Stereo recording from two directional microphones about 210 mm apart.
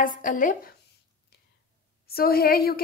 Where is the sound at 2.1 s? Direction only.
45° left (ahead or behind).